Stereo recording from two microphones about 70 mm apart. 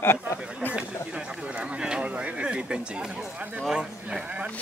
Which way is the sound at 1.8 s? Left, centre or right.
Centre.